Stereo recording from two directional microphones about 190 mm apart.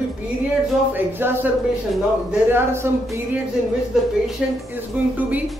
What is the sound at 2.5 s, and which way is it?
Speech, 15° right (ahead or behind).